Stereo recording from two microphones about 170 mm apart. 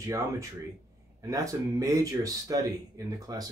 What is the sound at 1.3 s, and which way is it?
Speech, 20° right (ahead or behind).